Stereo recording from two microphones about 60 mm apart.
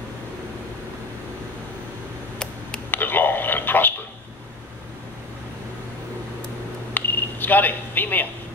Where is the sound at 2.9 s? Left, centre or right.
Left.